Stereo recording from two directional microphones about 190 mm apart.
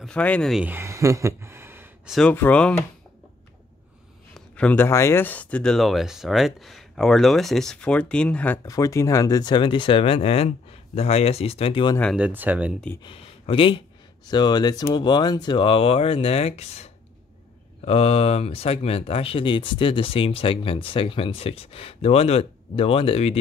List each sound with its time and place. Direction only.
0.0 s speech: 5° left (ahead or behind); by 2.1 s 10° right (ahead or behind)
2.1 s speech: 10° left (ahead or behind)
4.3 s speech: 5° left (ahead or behind)
8.6 s speech: 15° left (ahead or behind)
12.0 s speech: centre (ahead or behind)
12.3 s speech: 10° right (ahead or behind)
13.0 s speech: 30° left (ahead or behind)